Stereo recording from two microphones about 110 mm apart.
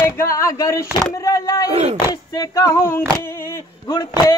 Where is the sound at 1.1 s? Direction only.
30° left (ahead or behind).